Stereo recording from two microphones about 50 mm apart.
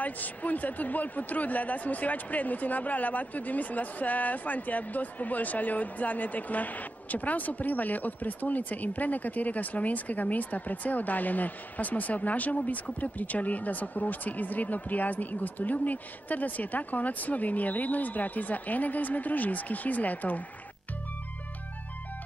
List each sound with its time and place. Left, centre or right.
0.0 s a man's voice: left